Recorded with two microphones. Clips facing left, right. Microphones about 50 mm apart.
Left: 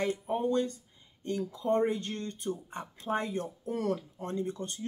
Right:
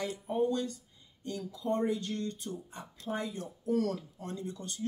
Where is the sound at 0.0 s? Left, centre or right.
Left.